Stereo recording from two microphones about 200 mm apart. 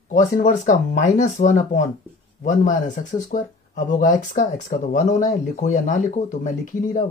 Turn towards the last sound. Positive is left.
turn(degrees=40)  # may be behind; listen again after turning